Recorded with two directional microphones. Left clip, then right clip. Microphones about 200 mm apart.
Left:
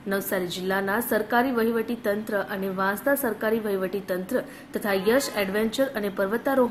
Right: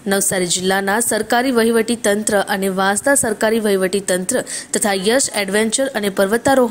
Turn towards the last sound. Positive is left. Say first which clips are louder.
# right 9 dB
turn(degrees=-40)  # may be behind; listen again after turning